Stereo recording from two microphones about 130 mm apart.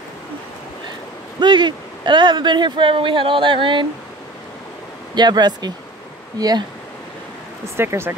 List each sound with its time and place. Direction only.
1.4 s speech: 35° right (ahead or behind)
5.1 s speech: 35° right (ahead or behind)
7.6 s speech: 20° right (ahead or behind)